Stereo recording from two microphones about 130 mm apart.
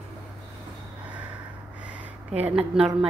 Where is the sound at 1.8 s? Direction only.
10° right (ahead or behind).